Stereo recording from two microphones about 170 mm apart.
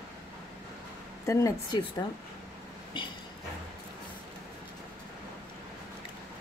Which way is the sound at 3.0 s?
30° left (ahead or behind).